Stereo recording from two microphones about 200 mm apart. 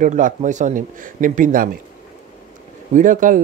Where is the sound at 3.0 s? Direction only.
40° right (ahead or behind).